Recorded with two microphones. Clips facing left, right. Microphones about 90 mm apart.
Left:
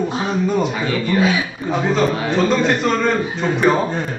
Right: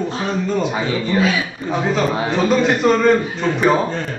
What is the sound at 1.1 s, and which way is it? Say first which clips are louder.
Speech: left 1 dB; 25° left (ahead or behind).